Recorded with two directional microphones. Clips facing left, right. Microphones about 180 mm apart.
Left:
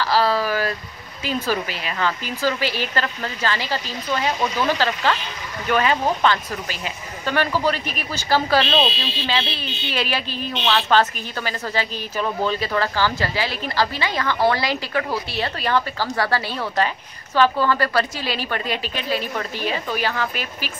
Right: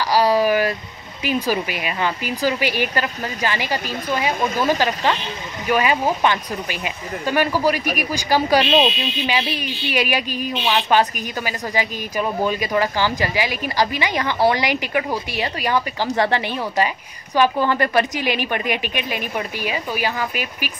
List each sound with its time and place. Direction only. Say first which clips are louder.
0.0 s a woman's voice: right 3 dB; 15° right (ahead or behind)
4.3 s speech: right 2 dB; 50° right (ahead or behind)
4.7 s a woman's voice: right 1 dB; 15° right (ahead or behind)